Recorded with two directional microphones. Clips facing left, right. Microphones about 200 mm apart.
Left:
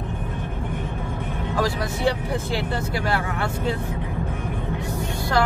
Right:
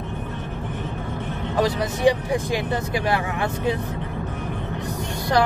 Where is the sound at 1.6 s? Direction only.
15° right (ahead or behind).